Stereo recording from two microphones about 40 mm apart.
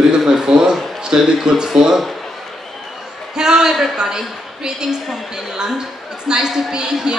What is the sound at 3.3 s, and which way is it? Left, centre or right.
A woman's voice, centre.